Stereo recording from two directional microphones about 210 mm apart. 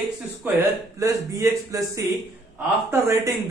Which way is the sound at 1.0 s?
15° right (ahead or behind).